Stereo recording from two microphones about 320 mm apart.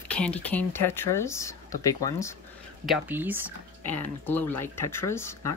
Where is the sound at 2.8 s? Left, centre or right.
Centre.